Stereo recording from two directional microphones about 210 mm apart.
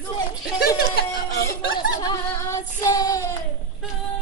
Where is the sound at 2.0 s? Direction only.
15° left (ahead or behind).